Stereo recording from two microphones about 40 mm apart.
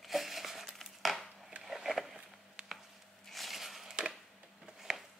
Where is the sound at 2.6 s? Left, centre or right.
Right.